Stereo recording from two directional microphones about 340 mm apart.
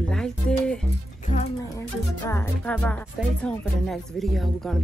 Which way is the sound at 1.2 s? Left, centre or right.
Centre.